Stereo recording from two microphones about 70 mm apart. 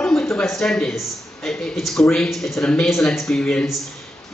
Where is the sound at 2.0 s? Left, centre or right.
Centre.